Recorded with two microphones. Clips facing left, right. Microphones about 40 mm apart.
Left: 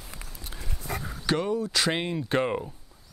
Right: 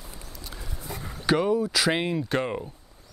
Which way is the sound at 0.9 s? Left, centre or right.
Left.